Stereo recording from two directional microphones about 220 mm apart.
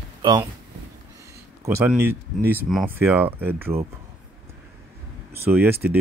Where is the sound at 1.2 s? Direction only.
15° right (ahead or behind).